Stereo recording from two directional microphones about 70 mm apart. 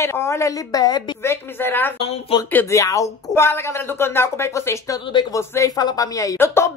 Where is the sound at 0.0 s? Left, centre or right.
Left.